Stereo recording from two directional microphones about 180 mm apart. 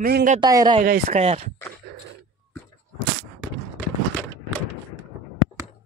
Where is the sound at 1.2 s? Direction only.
35° right (ahead or behind).